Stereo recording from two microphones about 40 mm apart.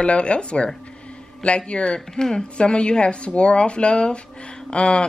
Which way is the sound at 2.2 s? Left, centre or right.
Centre.